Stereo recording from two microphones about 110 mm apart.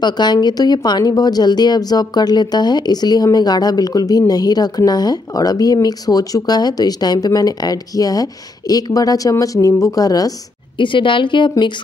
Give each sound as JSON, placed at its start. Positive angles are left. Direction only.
{"t": 0.0, "sound": "speech", "side_deg": 40}
{"t": 10.8, "sound": "a woman's voice", "side_deg": 50}